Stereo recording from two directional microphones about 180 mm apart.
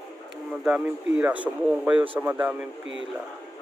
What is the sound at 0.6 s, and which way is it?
Speech, 5° right (ahead or behind).